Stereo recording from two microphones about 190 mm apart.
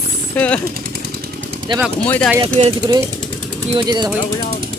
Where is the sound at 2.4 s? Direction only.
30° right (ahead or behind).